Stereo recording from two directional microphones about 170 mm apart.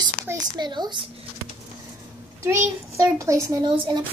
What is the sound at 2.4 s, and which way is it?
A child's voice, 15° right (ahead or behind).